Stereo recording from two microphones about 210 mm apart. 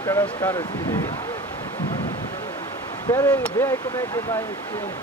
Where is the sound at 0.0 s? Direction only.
10° left (ahead or behind).